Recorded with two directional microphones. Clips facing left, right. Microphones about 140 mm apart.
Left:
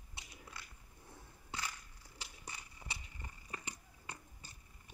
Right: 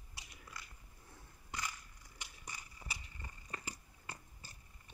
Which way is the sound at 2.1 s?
30° left (ahead or behind).